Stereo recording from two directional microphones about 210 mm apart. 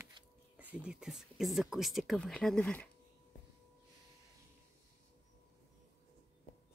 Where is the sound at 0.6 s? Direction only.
5° right (ahead or behind).